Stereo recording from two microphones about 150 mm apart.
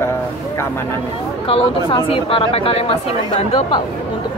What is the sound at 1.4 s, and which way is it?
Speech, 35° left (ahead or behind).